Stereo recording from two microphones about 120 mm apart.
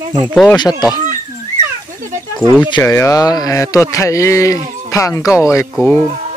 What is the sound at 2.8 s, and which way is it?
Speech, 25° left (ahead or behind).